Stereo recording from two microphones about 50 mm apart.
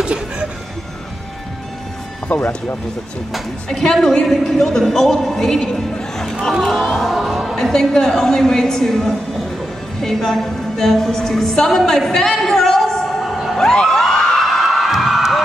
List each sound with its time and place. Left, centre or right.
0.0 s music: right
2.2 s speech: left
3.6 s speech: centre
7.0 s music: centre
7.5 s a woman's voice: centre
13.6 s a sound: centre
14.4 s a sound: centre